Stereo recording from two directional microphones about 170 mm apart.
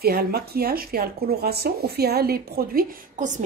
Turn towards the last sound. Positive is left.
turn(degrees=-45)  # may be behind; listen again after turning